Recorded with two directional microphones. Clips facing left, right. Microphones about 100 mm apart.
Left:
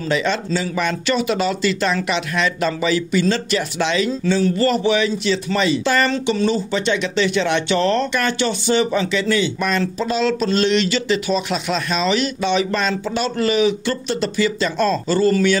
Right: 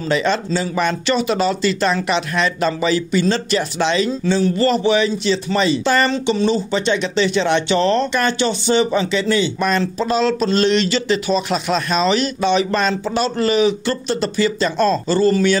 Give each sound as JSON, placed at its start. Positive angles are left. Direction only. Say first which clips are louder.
{"t": 0.1, "sound": "speech", "louder": "right 2 dB", "side_deg": -35}